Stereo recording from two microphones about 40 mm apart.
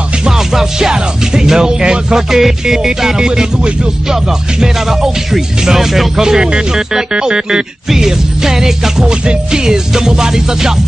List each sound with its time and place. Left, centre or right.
0.5 s speech: centre
2.1 s speech: centre
9.0 s speech: right